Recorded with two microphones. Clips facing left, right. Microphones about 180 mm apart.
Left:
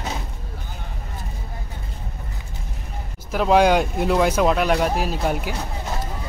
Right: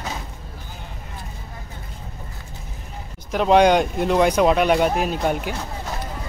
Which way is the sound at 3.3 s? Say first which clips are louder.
Right 1 dB; 5° left (ahead or behind).